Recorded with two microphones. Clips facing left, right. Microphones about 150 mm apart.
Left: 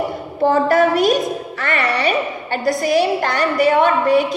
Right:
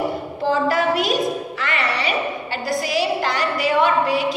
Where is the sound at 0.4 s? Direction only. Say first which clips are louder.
Left 6 dB; 50° left (ahead or behind).